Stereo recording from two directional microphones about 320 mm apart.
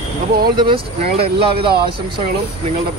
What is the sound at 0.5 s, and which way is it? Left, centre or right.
Speech, centre.